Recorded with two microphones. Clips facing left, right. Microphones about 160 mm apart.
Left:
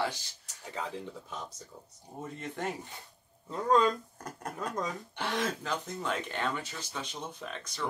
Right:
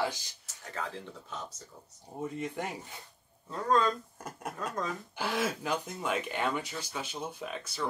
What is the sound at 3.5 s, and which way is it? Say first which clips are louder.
Speech: left 2 dB; 15° left (ahead or behind).